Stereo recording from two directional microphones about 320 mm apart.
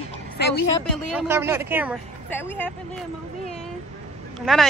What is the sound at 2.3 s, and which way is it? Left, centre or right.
Speech, centre.